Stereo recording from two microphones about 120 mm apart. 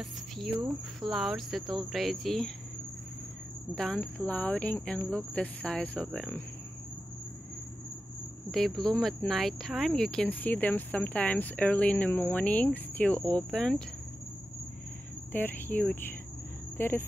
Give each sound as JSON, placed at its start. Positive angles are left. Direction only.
{"t": 0.0, "sound": "cricket", "side_deg": -5}
{"t": 1.0, "sound": "speech", "side_deg": -5}
{"t": 3.7, "sound": "speech", "side_deg": 5}
{"t": 8.5, "sound": "speech", "side_deg": 0}
{"t": 15.3, "sound": "speech", "side_deg": 15}